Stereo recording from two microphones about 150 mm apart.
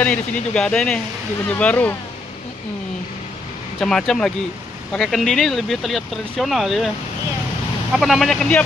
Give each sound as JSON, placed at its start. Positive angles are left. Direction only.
{"t": 0.0, "sound": "speech", "side_deg": 5}
{"t": 3.8, "sound": "speech", "side_deg": 5}
{"t": 7.9, "sound": "speech", "side_deg": 0}